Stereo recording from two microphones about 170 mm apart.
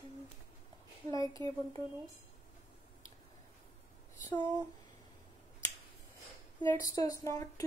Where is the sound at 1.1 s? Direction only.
20° left (ahead or behind).